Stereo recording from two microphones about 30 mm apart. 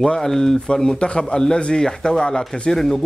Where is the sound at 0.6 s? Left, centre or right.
Left.